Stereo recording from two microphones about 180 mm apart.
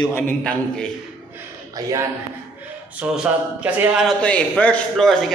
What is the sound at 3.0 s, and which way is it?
A man's voice, 5° right (ahead or behind).